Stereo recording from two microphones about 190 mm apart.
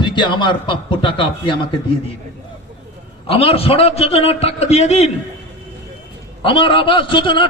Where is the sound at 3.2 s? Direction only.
30° left (ahead or behind).